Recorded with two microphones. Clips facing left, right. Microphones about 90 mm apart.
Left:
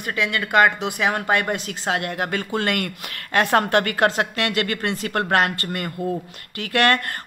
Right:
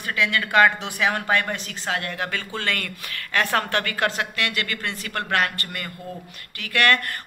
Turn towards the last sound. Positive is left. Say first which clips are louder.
# left 2 dB
turn(degrees=25)  # may be behind; listen again after turning